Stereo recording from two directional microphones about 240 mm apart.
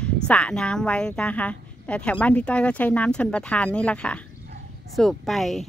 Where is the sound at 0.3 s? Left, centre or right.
Centre.